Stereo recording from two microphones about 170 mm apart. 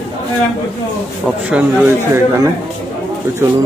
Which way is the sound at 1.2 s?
5° right (ahead or behind).